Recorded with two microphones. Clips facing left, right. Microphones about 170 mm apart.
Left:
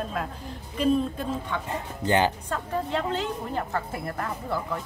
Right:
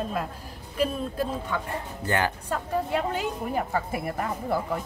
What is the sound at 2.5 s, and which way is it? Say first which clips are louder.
A woman's voice: right 1 dB; 10° right (ahead or behind).